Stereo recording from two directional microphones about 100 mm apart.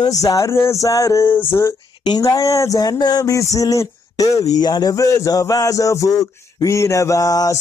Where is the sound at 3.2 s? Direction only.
30° left (ahead or behind).